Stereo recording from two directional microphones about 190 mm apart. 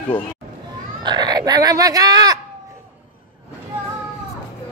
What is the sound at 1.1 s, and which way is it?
Speech, 20° right (ahead or behind).